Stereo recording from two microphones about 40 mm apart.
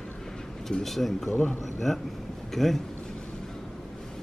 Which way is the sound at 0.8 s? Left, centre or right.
Centre.